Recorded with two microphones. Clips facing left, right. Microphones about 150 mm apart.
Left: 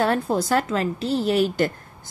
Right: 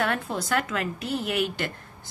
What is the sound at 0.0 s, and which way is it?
Speech, 35° left (ahead or behind).